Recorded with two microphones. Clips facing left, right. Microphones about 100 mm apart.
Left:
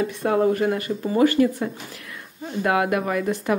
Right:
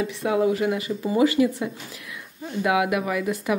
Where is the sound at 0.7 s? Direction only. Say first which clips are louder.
Left 1 dB; 15° right (ahead or behind).